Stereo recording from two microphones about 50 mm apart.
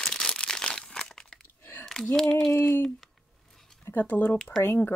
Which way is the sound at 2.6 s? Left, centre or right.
Left.